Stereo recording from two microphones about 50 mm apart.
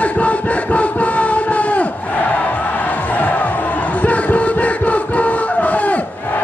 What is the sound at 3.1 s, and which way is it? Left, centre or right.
Music, left.